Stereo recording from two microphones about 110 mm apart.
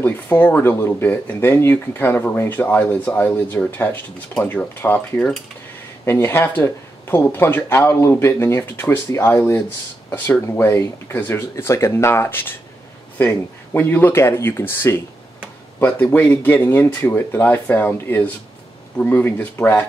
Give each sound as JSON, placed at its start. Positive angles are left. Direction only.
{"t": 0.0, "sound": "speech", "side_deg": 20}